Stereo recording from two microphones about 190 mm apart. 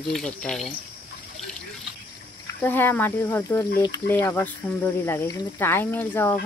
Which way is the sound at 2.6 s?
10° left (ahead or behind).